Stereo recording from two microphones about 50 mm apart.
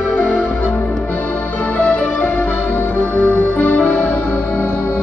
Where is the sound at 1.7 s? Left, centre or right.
Left.